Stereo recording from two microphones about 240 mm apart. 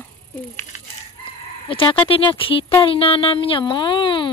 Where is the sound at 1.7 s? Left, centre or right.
Left.